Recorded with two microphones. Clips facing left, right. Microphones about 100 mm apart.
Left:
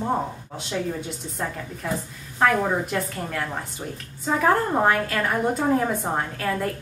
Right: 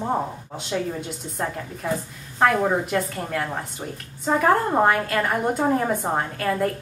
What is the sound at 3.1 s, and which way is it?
A woman's voice, 5° right (ahead or behind).